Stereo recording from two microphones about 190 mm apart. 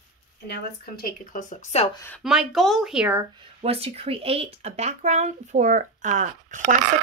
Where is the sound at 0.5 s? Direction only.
50° left (ahead or behind).